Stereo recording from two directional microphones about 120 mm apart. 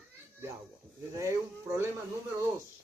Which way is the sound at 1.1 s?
25° right (ahead or behind).